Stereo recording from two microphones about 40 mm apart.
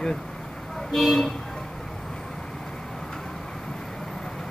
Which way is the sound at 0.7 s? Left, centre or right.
Centre.